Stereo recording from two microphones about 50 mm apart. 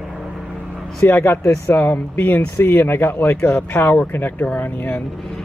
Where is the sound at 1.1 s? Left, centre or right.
Left.